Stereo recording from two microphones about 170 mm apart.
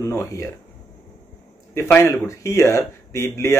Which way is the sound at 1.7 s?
15° left (ahead or behind).